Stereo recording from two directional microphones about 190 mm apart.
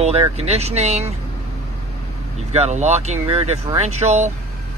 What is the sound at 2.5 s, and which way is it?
Speech, 35° right (ahead or behind).